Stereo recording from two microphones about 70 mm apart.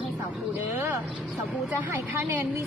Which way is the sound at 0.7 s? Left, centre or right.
Right.